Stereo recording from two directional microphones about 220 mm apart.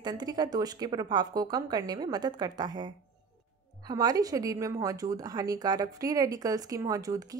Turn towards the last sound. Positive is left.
turn(degrees=-15)  # may be behind; listen again after turning